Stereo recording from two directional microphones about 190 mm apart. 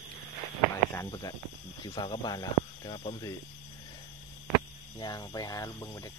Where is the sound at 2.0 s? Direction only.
20° left (ahead or behind).